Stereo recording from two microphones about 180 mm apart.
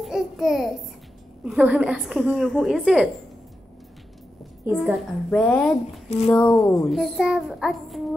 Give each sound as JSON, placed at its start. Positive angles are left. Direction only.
{"t": 0.0, "sound": "a sound", "side_deg": 0}
{"t": 1.4, "sound": "a woman's voice", "side_deg": -5}
{"t": 4.6, "sound": "a child's voice", "side_deg": -5}
{"t": 5.3, "sound": "a woman's voice", "side_deg": 5}
{"t": 6.0, "sound": "speech", "side_deg": 40}
{"t": 6.3, "sound": "speech", "side_deg": 15}
{"t": 6.9, "sound": "a woman's voice", "side_deg": 0}